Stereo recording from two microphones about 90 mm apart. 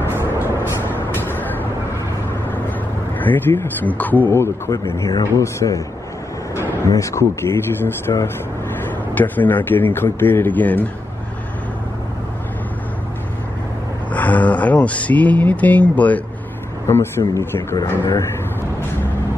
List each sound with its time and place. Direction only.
0.1 s vehicle: 25° right (ahead or behind)
0.8 s vehicle: 25° left (ahead or behind)
3.2 s a man's voice: 20° left (ahead or behind)
6.9 s speech: 35° left (ahead or behind)
9.1 s a man's voice: 20° left (ahead or behind)
14.1 s a sound: 15° left (ahead or behind)
16.8 s a man's voice: 30° left (ahead or behind)